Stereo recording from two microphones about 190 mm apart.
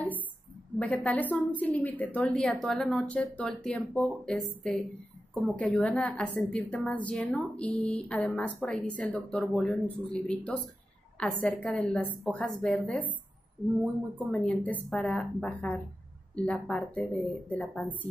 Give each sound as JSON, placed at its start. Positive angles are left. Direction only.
{"t": 0.7, "sound": "a woman's voice", "side_deg": 5}
{"t": 14.3, "sound": "a woman's voice", "side_deg": 5}